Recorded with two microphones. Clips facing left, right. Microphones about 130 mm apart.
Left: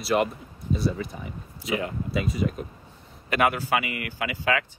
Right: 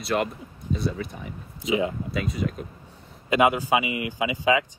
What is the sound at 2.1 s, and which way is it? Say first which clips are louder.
Speech: left 1 dB; centre (ahead or behind).